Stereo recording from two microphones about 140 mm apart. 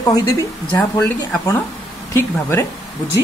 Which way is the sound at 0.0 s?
25° left (ahead or behind).